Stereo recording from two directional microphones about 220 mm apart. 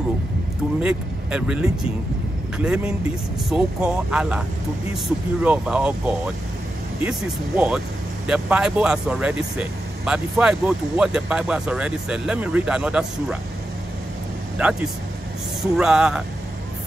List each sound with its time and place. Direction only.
0.8 s speech: 5° right (ahead or behind)
14.6 s speech: 5° right (ahead or behind)